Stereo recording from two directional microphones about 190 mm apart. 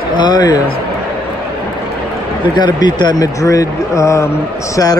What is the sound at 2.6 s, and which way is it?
Speech, 25° left (ahead or behind).